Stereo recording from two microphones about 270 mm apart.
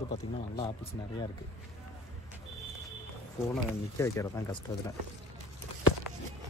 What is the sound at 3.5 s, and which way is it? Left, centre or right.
Speech, centre.